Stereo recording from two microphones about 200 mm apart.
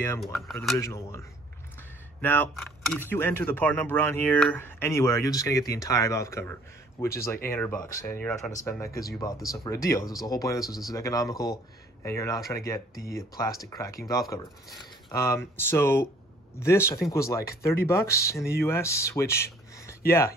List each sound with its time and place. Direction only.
0.2 s speech: centre (ahead or behind)
0.7 s speech: 15° left (ahead or behind)
2.2 s speech: 10° left (ahead or behind)
7.1 s speech: 45° left (ahead or behind)
7.4 s speech: 10° left (ahead or behind)